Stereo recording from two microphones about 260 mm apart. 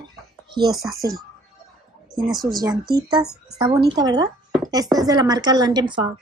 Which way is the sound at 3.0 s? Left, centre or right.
Centre.